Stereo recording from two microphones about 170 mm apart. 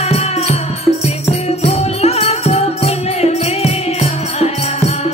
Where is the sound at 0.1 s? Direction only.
40° left (ahead or behind).